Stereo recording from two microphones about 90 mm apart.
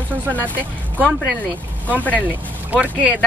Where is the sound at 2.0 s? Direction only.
15° left (ahead or behind).